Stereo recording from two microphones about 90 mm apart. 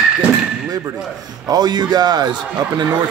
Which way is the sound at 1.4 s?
50° right (ahead or behind).